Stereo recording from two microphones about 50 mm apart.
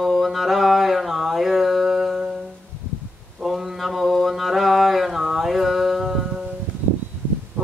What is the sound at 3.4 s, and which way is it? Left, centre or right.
Mantra, centre.